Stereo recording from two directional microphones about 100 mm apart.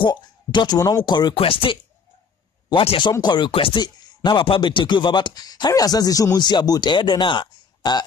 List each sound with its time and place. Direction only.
0.0 s speech: 50° left (ahead or behind)
1.3 s speech: 65° left (ahead or behind)
3.0 s speech: 50° left (ahead or behind)
3.8 s speech: 50° left (ahead or behind)